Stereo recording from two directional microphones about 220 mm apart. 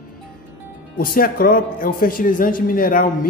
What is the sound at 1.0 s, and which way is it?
Speech, 40° left (ahead or behind).